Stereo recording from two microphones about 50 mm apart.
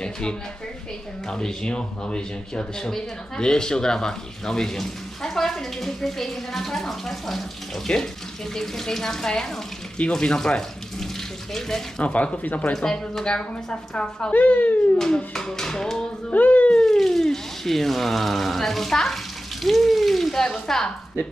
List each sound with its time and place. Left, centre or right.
0.0 s speech: centre
12.0 s speech: left
12.7 s speech: centre
14.3 s a child's voice: left
15.0 s speech: centre
16.3 s speech: left
16.7 s speech: centre